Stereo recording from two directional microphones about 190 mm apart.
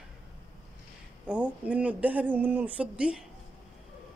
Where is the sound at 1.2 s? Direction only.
5° right (ahead or behind).